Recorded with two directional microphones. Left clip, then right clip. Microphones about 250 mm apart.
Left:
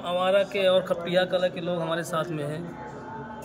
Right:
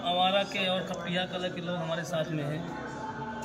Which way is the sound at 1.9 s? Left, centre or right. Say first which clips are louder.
Left 1 dB; centre.